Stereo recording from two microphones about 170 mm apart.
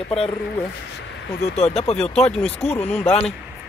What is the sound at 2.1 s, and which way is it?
Speech, centre (ahead or behind).